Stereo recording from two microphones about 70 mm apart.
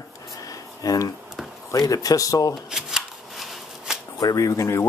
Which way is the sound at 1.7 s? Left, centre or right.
Left.